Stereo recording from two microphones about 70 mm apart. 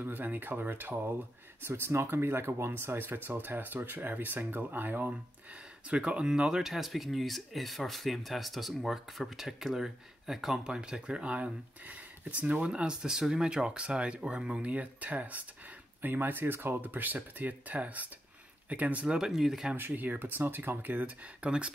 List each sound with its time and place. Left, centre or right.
0.0 s speech: right
5.9 s speech: centre
19.0 s speech: centre
19.7 s speech: right